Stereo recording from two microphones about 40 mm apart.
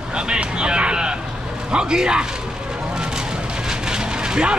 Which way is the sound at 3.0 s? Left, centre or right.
Centre.